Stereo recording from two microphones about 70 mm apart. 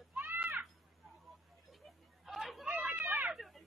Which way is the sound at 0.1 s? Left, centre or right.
Right.